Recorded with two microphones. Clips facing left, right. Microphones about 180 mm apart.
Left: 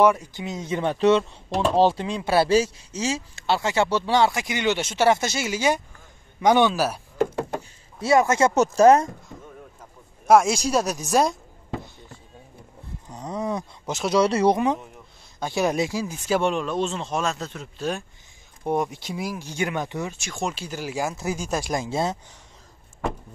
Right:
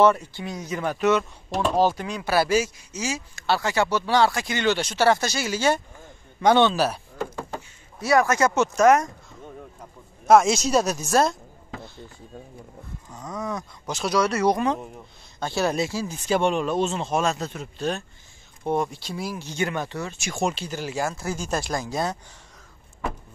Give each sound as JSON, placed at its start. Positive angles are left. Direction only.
{"t": 0.0, "sound": "speech", "side_deg": 10}
{"t": 8.0, "sound": "speech", "side_deg": 25}
{"t": 10.2, "sound": "speech", "side_deg": 10}
{"t": 13.1, "sound": "speech", "side_deg": 30}
{"t": 15.4, "sound": "speech", "side_deg": 15}
{"t": 20.2, "sound": "speech", "side_deg": -5}
{"t": 20.5, "sound": "speech", "side_deg": 10}
{"t": 21.7, "sound": "speech", "side_deg": 25}